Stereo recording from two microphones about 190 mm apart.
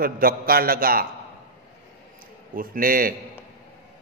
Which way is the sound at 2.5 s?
50° right (ahead or behind).